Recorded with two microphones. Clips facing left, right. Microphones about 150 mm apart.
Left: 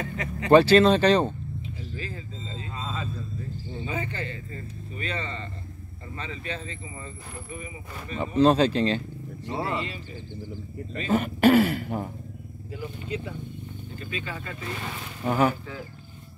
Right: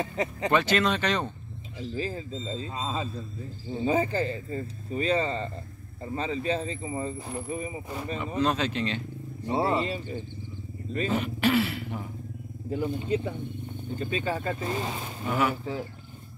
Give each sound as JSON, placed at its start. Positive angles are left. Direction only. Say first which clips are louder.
{"t": 0.0, "sound": "speech", "louder": "right 3 dB", "side_deg": -30}
{"t": 0.5, "sound": "speech", "louder": "left 9 dB", "side_deg": 35}
{"t": 2.0, "sound": "a man's voice", "louder": "right 5 dB", "side_deg": -30}
{"t": 3.8, "sound": "speech", "louder": "right 8 dB", "side_deg": -35}
{"t": 8.4, "sound": "speech", "louder": "left 8 dB", "side_deg": 30}
{"t": 9.7, "sound": "speech", "louder": "right 4 dB", "side_deg": -35}
{"t": 11.1, "sound": "speech", "louder": "left 7 dB", "side_deg": 50}
{"t": 12.7, "sound": "speech", "louder": "right 6 dB", "side_deg": -50}
{"t": 14.1, "sound": "speech", "louder": "right 6 dB", "side_deg": -35}
{"t": 15.2, "sound": "speech", "louder": "left 4 dB", "side_deg": 40}